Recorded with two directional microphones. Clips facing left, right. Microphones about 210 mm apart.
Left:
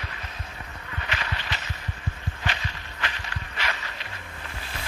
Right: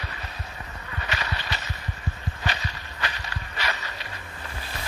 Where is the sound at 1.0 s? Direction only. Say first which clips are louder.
Right 1 dB; 40° right (ahead or behind).